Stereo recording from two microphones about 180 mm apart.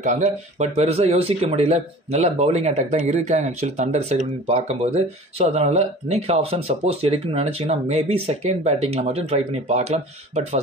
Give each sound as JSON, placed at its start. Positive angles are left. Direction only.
{"t": 0.0, "sound": "speech", "side_deg": -40}